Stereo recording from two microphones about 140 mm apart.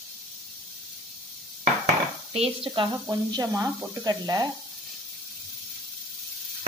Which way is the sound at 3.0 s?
25° right (ahead or behind).